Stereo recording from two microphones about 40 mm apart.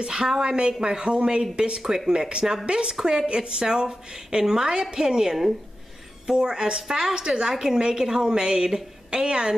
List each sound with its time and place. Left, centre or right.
0.0 s a woman's voice: right
1.8 s a woman's voice: centre